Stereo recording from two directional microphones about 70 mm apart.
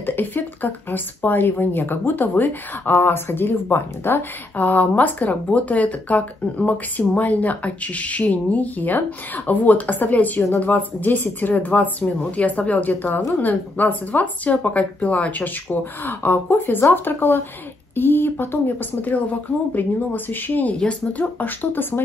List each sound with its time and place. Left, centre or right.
0.0 s speech: left